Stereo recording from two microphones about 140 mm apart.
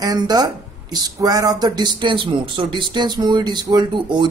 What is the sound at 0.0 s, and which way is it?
Speech, 30° right (ahead or behind).